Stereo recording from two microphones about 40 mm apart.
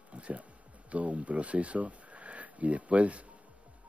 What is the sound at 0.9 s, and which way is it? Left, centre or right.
A man's voice, right.